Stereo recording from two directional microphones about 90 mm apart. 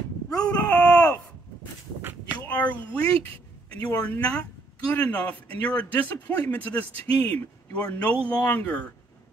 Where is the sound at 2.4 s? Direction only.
15° left (ahead or behind).